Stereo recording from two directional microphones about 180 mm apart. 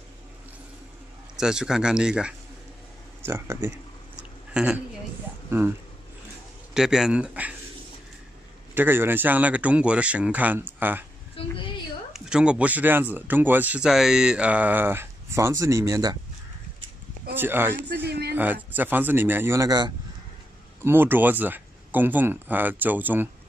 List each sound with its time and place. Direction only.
1.3 s speech: 5° right (ahead or behind)
3.3 s speech: 15° right (ahead or behind)
4.2 s a sound: 5° right (ahead or behind)
5.5 s speech: 10° right (ahead or behind)
8.7 s speech: 10° right (ahead or behind)
11.4 s a woman's voice: 30° left (ahead or behind)
12.1 s speech: 5° right (ahead or behind); by 16.2 s 20° right (ahead or behind)
17.4 s speech: 10° right (ahead or behind)
18.0 s speech: 65° right (ahead or behind)
18.3 s speech: 10° right (ahead or behind)